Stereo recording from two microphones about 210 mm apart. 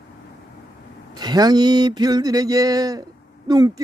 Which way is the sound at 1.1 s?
20° right (ahead or behind).